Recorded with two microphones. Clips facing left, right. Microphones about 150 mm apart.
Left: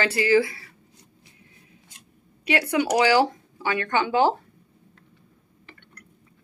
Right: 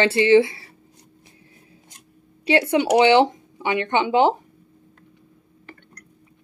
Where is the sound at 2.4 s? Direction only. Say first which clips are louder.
Right 4 dB; 25° right (ahead or behind).